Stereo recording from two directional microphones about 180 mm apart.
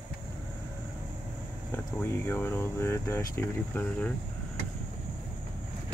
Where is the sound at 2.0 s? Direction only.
10° left (ahead or behind).